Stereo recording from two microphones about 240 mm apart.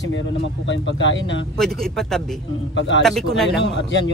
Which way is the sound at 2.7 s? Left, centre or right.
Left.